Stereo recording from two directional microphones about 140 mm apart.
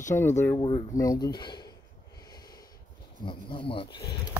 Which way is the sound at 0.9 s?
25° left (ahead or behind).